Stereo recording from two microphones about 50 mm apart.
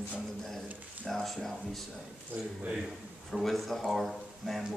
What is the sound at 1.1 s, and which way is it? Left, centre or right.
Speech, centre.